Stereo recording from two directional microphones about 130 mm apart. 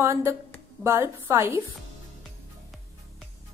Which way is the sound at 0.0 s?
20° right (ahead or behind).